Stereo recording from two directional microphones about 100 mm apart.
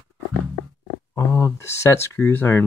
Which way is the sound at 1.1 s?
30° left (ahead or behind).